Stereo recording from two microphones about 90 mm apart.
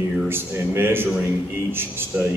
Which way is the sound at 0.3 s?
25° right (ahead or behind).